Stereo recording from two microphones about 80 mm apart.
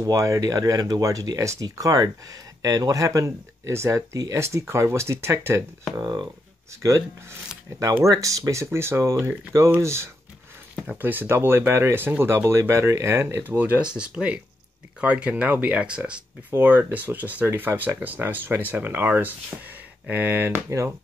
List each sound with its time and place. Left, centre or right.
0.0 s speech: right
5.9 s speech: right
6.8 s speech: right
11.0 s speech: right
13.9 s speech: centre